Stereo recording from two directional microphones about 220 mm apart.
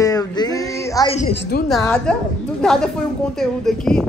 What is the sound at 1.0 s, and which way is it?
Speech, 30° left (ahead or behind).